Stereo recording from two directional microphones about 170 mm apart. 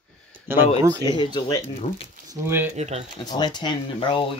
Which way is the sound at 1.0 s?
30° left (ahead or behind).